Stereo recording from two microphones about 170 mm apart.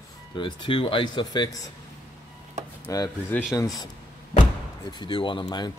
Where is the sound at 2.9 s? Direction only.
15° left (ahead or behind).